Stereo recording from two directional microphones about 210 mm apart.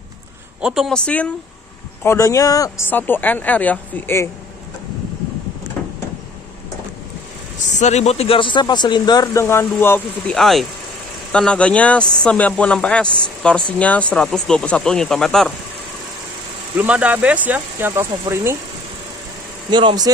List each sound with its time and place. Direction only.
0.6 s speech: 5° right (ahead or behind)
7.8 s speech: 30° left (ahead or behind); by 15.5 s centre (ahead or behind)
16.7 s speech: 5° right (ahead or behind)
19.7 s speech: 20° right (ahead or behind)